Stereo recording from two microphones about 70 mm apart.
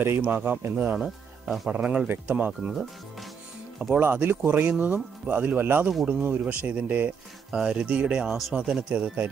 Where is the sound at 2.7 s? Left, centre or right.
Centre.